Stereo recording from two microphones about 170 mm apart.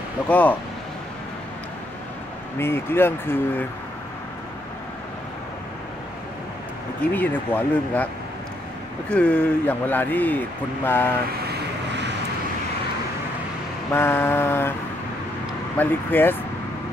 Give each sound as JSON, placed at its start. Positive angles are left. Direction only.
{"t": 0.3, "sound": "speech", "side_deg": 10}
{"t": 2.6, "sound": "speech", "side_deg": 15}
{"t": 7.1, "sound": "speech", "side_deg": 10}
{"t": 9.1, "sound": "speech", "side_deg": 10}
{"t": 11.4, "sound": "vehicle", "side_deg": -90}
{"t": 13.9, "sound": "speech", "side_deg": 15}
{"t": 15.8, "sound": "speech", "side_deg": 10}